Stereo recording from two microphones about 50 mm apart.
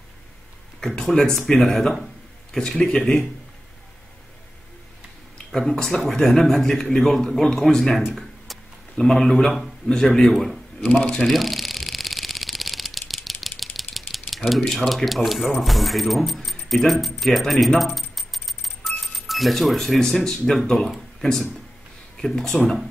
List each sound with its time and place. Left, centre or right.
1.0 s a man's voice: centre
5.5 s a man's voice: centre
8.0 s a sound: centre
8.9 s a man's voice: centre
10.8 s speech: left
11.2 s camera: centre
14.9 s speech: centre
17.9 s coin: centre
21.2 s a man's voice: centre